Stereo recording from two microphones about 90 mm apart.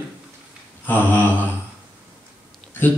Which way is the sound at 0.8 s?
20° left (ahead or behind).